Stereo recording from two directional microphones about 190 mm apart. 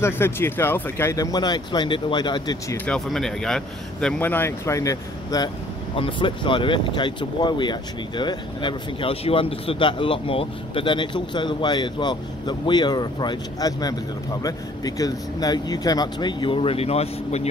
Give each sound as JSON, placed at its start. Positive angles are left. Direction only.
{"t": 0.0, "sound": "speech", "side_deg": 10}
{"t": 2.8, "sound": "a man's voice", "side_deg": 5}